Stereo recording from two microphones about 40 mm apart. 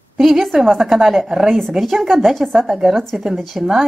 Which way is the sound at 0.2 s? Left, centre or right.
Centre.